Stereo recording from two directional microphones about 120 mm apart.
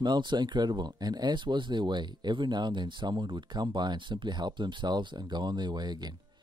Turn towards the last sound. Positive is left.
turn(degrees=-35)  # may be behind; listen again after turning